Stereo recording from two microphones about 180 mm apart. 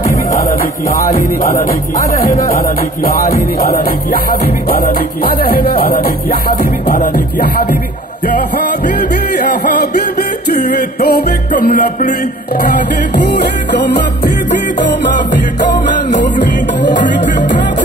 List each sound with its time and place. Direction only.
0.1 s music: 50° left (ahead or behind)
1.4 s speech: 50° left (ahead or behind)
3.0 s music: 55° left (ahead or behind)
9.4 s music: 60° left (ahead or behind)
16.8 s music: 75° left (ahead or behind)